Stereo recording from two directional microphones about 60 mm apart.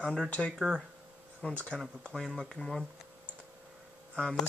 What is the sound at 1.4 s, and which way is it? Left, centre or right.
Speech, left.